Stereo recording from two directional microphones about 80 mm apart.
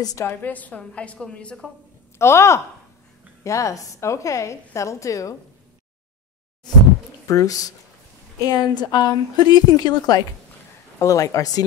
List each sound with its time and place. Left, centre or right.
0.2 s a woman's voice: left
2.1 s a woman's voice: left
7.2 s speech: left
8.5 s a woman's voice: left
11.0 s speech: left